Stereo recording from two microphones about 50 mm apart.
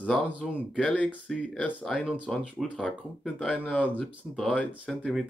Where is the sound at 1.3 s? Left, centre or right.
Centre.